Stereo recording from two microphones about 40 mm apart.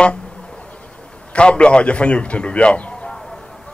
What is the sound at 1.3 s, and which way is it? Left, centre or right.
A man's voice, left.